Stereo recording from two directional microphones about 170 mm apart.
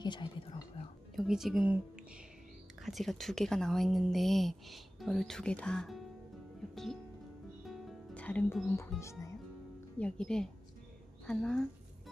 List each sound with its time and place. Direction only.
0.0 s speech: 25° left (ahead or behind)
1.1 s a woman's voice: centre (ahead or behind)
2.8 s a woman's voice: centre (ahead or behind)
6.7 s music: centre (ahead or behind)
7.6 s speech: centre (ahead or behind); by 9.3 s 15° left (ahead or behind)
9.9 s a woman's voice: 5° left (ahead or behind)